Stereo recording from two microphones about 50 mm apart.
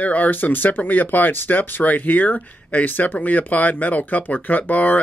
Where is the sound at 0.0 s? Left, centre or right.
Left.